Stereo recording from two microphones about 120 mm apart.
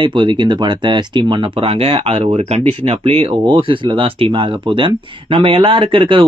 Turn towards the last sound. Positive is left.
turn(degrees=-45)  # may be behind; listen again after turning